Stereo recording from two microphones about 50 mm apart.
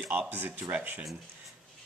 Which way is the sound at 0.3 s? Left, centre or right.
Right.